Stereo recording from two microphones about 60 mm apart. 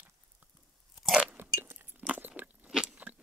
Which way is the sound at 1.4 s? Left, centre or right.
Right.